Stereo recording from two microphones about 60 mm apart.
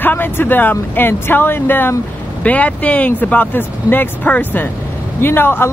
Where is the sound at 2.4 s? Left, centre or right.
Left.